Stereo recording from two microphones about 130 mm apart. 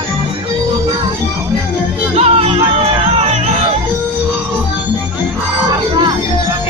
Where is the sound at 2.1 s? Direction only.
50° right (ahead or behind).